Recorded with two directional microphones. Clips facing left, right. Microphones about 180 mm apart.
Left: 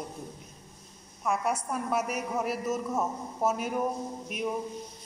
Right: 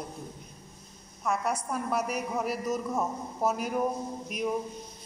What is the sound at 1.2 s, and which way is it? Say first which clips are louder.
A woman's voice: left 1 dB; 5° left (ahead or behind).